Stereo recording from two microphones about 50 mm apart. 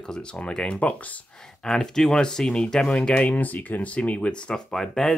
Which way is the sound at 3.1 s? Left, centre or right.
Left.